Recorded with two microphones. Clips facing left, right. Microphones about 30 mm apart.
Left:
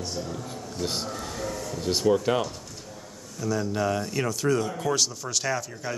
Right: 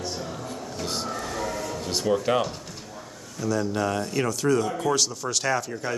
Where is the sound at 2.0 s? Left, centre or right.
Centre.